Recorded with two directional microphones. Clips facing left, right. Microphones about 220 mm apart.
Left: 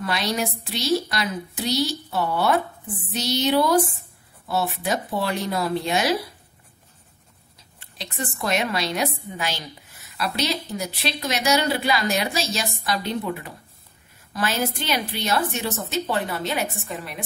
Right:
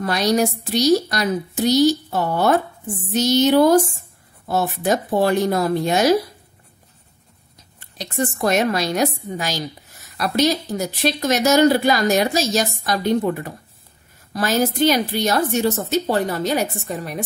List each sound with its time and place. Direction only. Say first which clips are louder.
0.0 s speech: right 7 dB; 45° right (ahead or behind)
7.8 s a woman's voice: right 8 dB; 45° right (ahead or behind)